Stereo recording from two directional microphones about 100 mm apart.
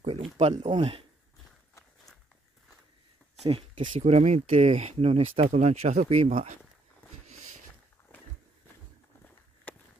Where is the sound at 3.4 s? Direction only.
80° right.